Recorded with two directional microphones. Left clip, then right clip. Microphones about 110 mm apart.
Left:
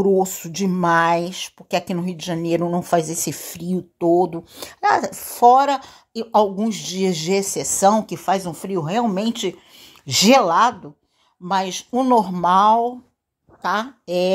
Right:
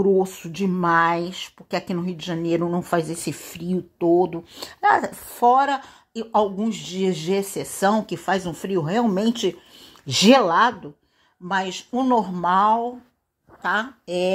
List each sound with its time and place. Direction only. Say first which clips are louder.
0.0 s speech: left 2 dB; 30° left (ahead or behind)
7.8 s speech: left 4 dB; 25° left (ahead or behind); by 9.6 s 10° left (ahead or behind)
10.2 s speech: left 1 dB; 20° left (ahead or behind)
11.4 s a woman's voice: left 3 dB; 55° left (ahead or behind)